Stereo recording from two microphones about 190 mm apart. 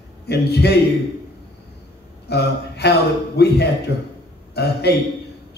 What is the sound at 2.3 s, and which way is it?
A man's voice, 60° left (ahead or behind).